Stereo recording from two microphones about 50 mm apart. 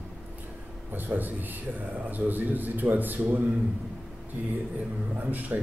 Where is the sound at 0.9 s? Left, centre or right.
Right.